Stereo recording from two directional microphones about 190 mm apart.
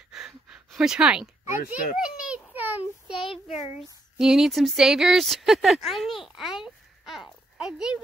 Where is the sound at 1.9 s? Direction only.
5° right (ahead or behind).